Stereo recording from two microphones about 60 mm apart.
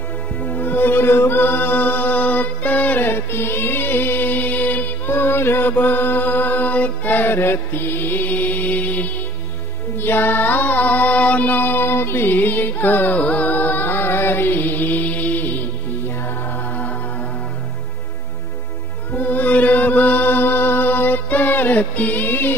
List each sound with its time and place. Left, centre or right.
0.4 s music: left
9.9 s music: left
19.1 s chant: left